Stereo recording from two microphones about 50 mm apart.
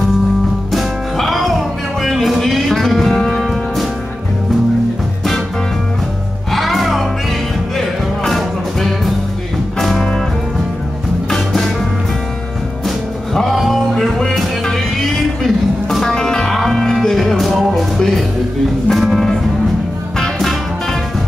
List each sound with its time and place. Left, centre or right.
0.7 s music: centre
6.5 s music: centre
11.2 s music: centre
12.8 s music: centre